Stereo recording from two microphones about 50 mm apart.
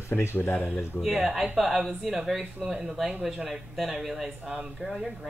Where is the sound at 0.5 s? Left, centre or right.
Left.